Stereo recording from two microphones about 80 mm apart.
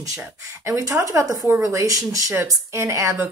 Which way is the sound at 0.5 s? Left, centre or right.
Right.